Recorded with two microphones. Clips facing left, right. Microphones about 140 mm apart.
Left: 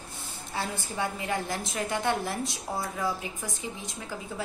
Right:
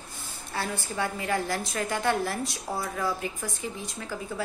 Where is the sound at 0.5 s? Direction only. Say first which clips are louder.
Right 1 dB; 20° left (ahead or behind).